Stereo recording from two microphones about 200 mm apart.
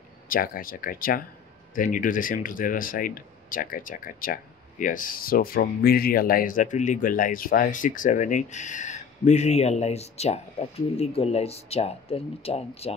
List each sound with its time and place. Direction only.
0.3 s speech: 45° left (ahead or behind); by 12.9 s 30° left (ahead or behind)